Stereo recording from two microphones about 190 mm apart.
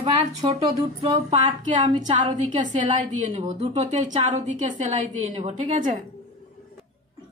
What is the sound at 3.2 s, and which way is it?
A woman's voice, 35° right (ahead or behind).